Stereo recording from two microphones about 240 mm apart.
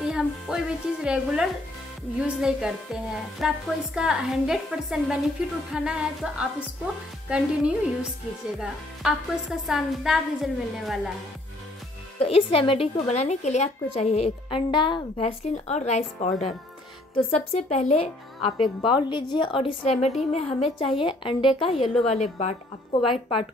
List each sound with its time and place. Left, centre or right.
0.1 s speech: centre
12.2 s a woman's voice: left